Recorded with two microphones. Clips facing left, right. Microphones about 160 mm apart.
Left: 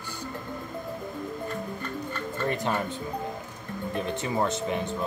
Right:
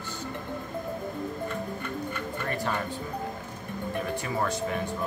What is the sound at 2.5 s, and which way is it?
Music, 20° left (ahead or behind).